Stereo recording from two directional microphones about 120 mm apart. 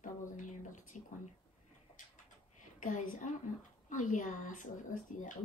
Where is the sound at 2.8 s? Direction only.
90° left.